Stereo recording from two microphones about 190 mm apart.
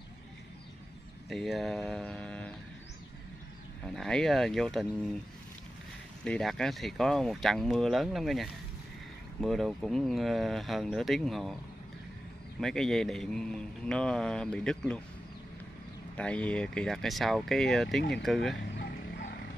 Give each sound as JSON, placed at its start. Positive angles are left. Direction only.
{"t": 1.3, "sound": "speech", "side_deg": 0}
{"t": 3.8, "sound": "mantra", "side_deg": 5}
{"t": 6.2, "sound": "mantra", "side_deg": 5}
{"t": 12.5, "sound": "mantra", "side_deg": 0}
{"t": 16.2, "sound": "mantra", "side_deg": 5}
{"t": 18.8, "sound": "a sound", "side_deg": 65}